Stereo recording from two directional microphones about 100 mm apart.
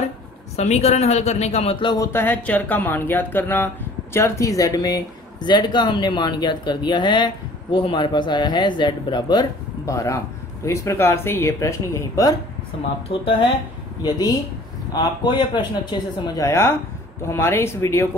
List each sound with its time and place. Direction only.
0.6 s speech: 90° left
2.1 s speech: 15° left (ahead or behind); by 12.4 s 35° left (ahead or behind)
13.1 s speech: 75° left (ahead or behind)
14.0 s speech: 40° left (ahead or behind)
16.3 s speech: 30° left (ahead or behind)